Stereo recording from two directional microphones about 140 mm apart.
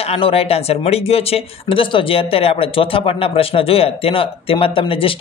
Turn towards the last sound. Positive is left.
turn(degrees=40)  # may be behind; listen again after turning